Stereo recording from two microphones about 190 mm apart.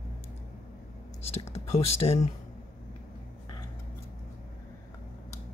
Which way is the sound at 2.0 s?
30° left (ahead or behind).